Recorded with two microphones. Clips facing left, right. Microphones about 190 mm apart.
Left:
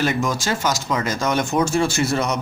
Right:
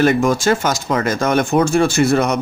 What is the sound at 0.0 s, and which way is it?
Speech, 55° right (ahead or behind).